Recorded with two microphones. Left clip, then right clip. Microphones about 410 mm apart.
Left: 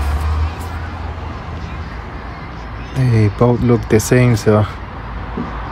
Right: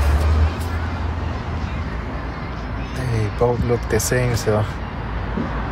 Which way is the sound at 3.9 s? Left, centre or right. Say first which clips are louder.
Left 8 dB; left.